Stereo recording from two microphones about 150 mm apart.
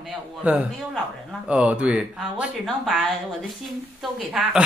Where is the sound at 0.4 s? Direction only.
10° right (ahead or behind).